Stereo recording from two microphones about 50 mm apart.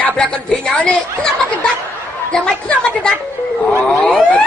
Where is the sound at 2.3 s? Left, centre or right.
Centre.